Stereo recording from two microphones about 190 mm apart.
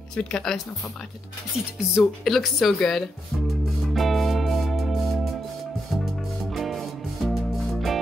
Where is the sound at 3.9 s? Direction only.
Centre (ahead or behind).